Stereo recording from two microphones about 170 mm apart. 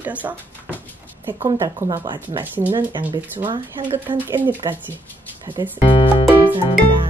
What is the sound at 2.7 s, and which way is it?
Speech, 25° right (ahead or behind).